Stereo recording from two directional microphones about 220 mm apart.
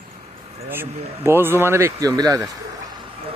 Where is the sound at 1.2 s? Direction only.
10° right (ahead or behind).